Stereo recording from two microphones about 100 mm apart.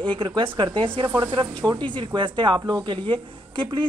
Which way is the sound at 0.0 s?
55° right (ahead or behind).